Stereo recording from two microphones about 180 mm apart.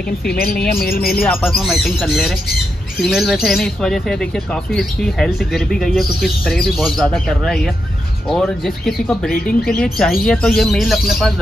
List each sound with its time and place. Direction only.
0.3 s speech: 55° left (ahead or behind)
1.2 s speech: 5° left (ahead or behind)